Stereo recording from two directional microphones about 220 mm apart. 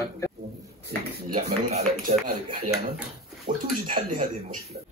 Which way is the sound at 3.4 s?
40° right (ahead or behind).